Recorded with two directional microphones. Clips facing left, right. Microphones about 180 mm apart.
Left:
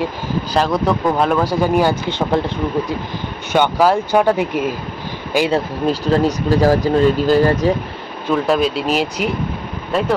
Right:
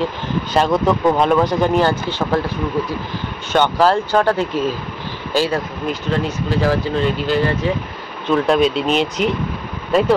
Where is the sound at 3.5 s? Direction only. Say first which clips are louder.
Left 1 dB; 10° left (ahead or behind).